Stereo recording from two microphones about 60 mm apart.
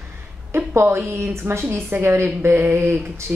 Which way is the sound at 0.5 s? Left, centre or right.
Right.